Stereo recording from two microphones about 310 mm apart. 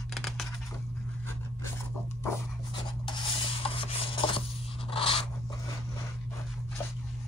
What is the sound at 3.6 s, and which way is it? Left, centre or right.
Rub, centre.